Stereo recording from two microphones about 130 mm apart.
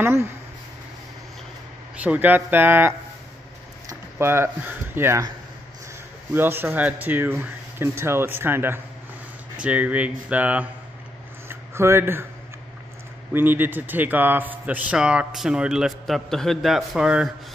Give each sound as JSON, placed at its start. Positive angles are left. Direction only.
{"t": 0.0, "sound": "speech", "side_deg": -20}
{"t": 2.0, "sound": "a man's voice", "side_deg": -10}
{"t": 4.2, "sound": "speech", "side_deg": -20}
{"t": 6.3, "sound": "a man's voice", "side_deg": -15}
{"t": 11.4, "sound": "a sound", "side_deg": -20}
{"t": 13.3, "sound": "a man's voice", "side_deg": -15}